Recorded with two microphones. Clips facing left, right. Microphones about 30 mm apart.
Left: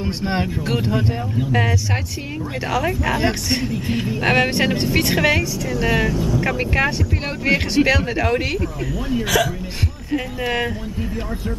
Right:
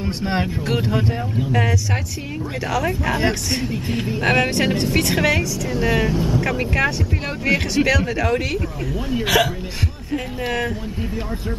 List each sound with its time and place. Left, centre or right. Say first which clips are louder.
0.0 s speech: even; centre
1.5 s a woman's voice: left 1 dB; centre
4.4 s a woman's voice: left 1 dB; centre
6.1 s speech: even; right
6.4 s a woman's voice: left 1 dB; centre
9.1 s speech: right 1 dB; right